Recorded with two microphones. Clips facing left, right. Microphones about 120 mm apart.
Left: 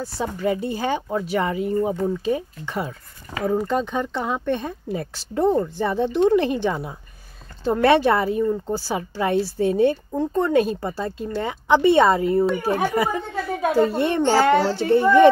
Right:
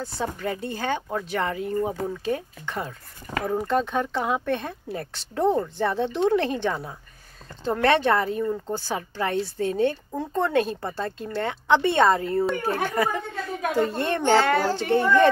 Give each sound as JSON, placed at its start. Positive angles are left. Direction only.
{"t": 0.0, "sound": "speech", "side_deg": 5}
{"t": 10.1, "sound": "speech", "side_deg": 0}
{"t": 14.3, "sound": "child singing", "side_deg": 25}